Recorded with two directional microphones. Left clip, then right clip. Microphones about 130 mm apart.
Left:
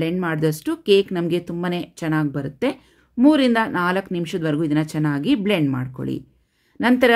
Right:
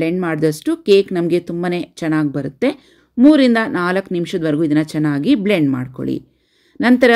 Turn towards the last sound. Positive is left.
turn(degrees=-30)  # may be behind; listen again after turning